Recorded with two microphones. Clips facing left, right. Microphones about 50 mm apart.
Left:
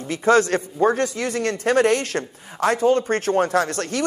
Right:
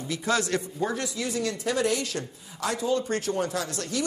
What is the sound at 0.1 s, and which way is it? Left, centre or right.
A man's voice, left.